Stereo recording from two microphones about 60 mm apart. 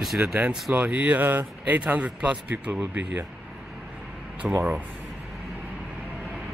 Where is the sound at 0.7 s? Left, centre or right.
Right.